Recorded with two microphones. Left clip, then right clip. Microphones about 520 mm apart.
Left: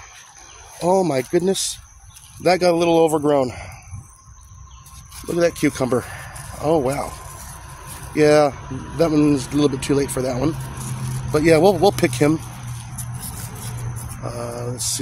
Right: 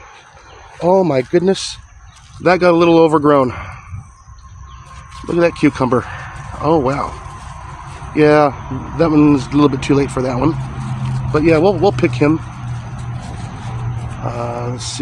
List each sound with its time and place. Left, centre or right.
0.7 s speech: left
5.3 s speech: left
8.1 s speech: left
14.2 s a sound: left